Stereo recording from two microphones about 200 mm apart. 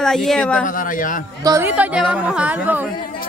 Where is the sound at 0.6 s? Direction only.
40° left (ahead or behind).